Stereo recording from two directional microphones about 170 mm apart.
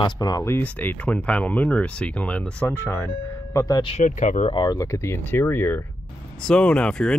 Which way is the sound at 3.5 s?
20° left (ahead or behind).